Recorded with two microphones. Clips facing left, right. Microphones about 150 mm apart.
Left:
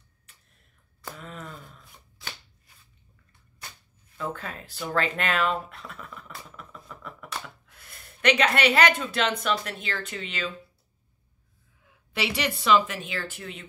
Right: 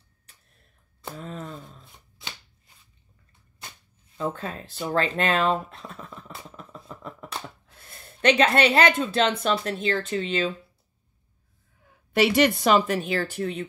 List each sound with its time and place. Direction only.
1.1 s shuffling cards: 30° right (ahead or behind)
4.2 s speech: 25° right (ahead or behind)
11.8 s speech: 45° right (ahead or behind)